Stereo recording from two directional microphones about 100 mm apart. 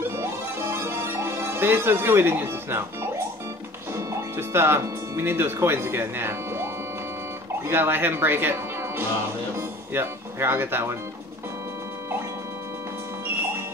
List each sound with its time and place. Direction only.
0.1 s music: 25° right (ahead or behind)
3.9 s speech: 25° right (ahead or behind)